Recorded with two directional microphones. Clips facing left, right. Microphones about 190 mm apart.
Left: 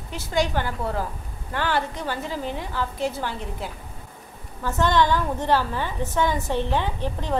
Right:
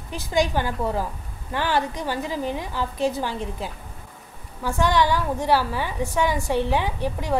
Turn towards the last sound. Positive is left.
turn(degrees=-10)  # may be behind; listen again after turning